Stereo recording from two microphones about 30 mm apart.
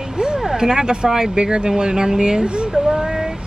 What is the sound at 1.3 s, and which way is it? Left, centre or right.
Speech, right.